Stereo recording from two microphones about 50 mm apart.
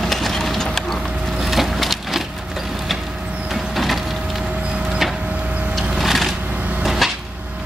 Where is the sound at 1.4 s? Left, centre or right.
Centre.